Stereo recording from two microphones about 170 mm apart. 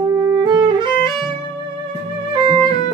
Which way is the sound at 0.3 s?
25° right (ahead or behind).